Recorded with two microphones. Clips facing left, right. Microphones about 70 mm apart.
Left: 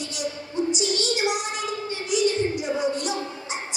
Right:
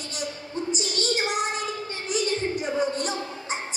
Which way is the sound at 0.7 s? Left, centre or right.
Right.